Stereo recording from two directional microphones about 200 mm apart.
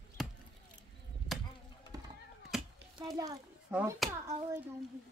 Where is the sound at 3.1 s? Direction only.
15° right (ahead or behind).